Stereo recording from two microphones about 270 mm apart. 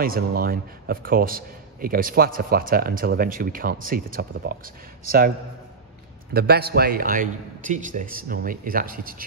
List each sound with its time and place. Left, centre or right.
0.0 s a man's voice: right
6.3 s a man's voice: right